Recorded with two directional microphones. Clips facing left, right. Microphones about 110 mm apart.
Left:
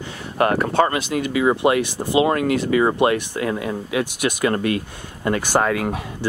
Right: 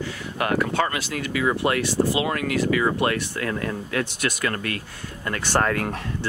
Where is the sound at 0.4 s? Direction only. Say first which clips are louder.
Left 5 dB; 35° left (ahead or behind).